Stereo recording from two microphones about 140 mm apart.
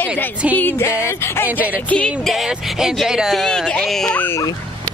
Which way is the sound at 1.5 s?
10° right (ahead or behind).